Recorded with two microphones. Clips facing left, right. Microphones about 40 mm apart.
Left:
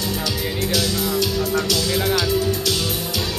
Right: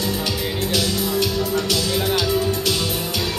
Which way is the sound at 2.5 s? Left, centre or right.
Right.